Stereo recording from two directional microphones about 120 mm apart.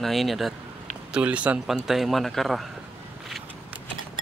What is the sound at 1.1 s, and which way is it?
Speech, 10° right (ahead or behind).